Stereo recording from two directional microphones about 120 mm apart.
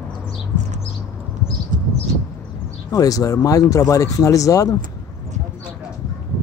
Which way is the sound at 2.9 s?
30° left (ahead or behind).